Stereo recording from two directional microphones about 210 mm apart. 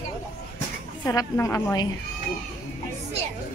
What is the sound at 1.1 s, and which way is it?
Speech, 15° left (ahead or behind).